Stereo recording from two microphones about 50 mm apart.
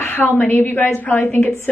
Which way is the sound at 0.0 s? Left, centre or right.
Left.